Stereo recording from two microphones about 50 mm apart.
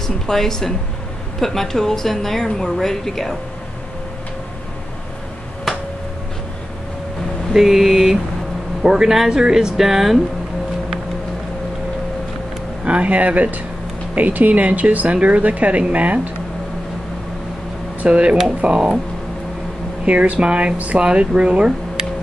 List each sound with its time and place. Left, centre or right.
0.0 s a woman's voice: centre
5.7 s a sound: centre
7.5 s speech: centre
12.8 s speech: right
18.0 s speech: right
20.1 s speech: right